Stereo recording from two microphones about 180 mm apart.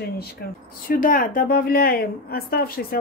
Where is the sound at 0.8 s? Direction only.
50° left (ahead or behind).